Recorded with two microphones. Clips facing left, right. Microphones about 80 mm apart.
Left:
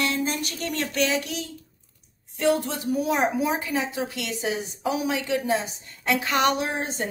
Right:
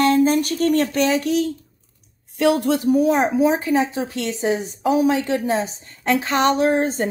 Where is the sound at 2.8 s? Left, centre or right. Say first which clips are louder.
Right 5 dB; right.